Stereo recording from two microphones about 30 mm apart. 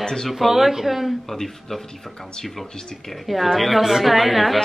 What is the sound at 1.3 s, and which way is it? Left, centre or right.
Speech, centre.